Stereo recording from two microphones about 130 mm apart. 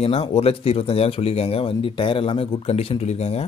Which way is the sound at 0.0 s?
50° left (ahead or behind).